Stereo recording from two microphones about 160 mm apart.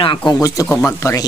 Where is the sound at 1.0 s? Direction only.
15° left (ahead or behind).